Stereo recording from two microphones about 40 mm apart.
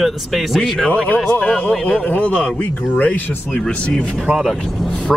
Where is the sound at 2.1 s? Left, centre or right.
Left.